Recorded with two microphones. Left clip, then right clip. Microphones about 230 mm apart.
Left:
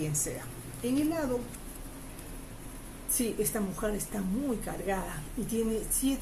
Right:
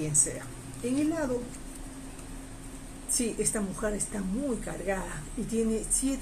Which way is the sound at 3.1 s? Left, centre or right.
Centre.